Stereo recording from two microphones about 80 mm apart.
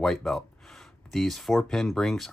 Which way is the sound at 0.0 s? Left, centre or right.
Centre.